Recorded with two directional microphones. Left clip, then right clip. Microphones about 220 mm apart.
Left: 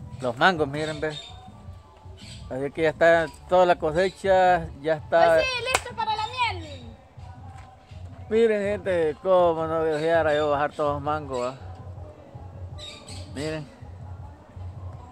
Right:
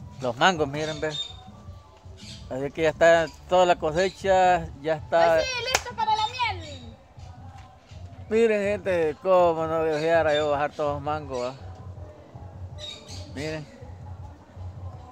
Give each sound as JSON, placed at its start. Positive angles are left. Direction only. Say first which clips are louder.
{"t": 0.2, "sound": "speech", "louder": "left 1 dB", "side_deg": 0}
{"t": 2.5, "sound": "speech", "louder": "even", "side_deg": 0}
{"t": 5.5, "sound": "children playing", "louder": "left 1 dB", "side_deg": 20}
{"t": 8.3, "sound": "speech", "louder": "even", "side_deg": -5}
{"t": 13.3, "sound": "speech", "louder": "left 2 dB", "side_deg": 5}